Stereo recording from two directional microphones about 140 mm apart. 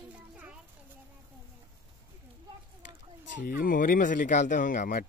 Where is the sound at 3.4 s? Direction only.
75° left (ahead or behind).